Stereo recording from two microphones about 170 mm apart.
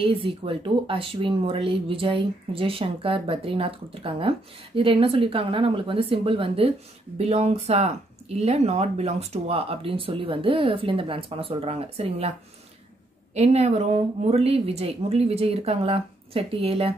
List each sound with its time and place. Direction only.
0.0 s speech: 30° right (ahead or behind)
13.3 s speech: 40° right (ahead or behind)